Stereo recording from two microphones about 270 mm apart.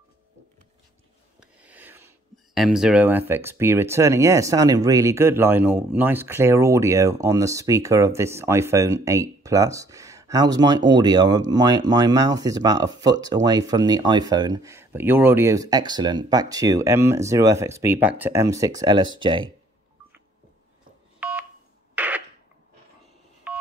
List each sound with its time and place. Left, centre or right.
1.4 s speech: centre
21.2 s telephone dialing: centre
21.9 s a sound: centre
23.5 s telephone dialing: centre